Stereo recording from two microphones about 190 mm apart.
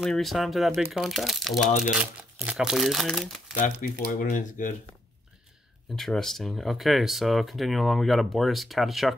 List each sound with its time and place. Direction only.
0.0 s speech: centre (ahead or behind)
3.8 s speech: 45° left (ahead or behind)
5.9 s speech: centre (ahead or behind)